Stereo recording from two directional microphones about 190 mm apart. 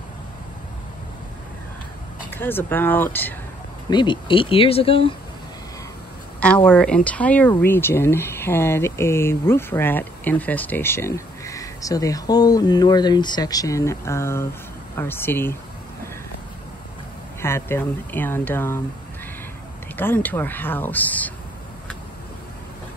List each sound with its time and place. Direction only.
2.3 s speech: 10° left (ahead or behind)
3.9 s speech: 25° left (ahead or behind)
6.4 s speech: 5° left (ahead or behind)
17.4 s speech: 15° left (ahead or behind)
20.0 s speech: 10° left (ahead or behind)